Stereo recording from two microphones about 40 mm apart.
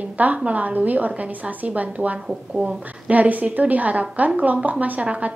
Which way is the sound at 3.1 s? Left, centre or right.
Right.